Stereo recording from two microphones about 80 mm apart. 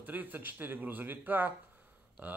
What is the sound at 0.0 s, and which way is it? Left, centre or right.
Speech, right.